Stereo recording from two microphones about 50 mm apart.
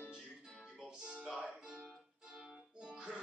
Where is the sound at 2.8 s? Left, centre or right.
Centre.